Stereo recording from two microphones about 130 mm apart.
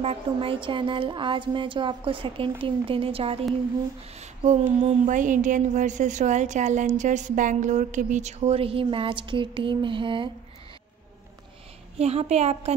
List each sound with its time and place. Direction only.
0.0 s speech: 50° right (ahead or behind)
4.2 s a woman's voice: 60° right (ahead or behind); by 10.3 s 40° right (ahead or behind)
12.0 s a woman's voice: 55° right (ahead or behind)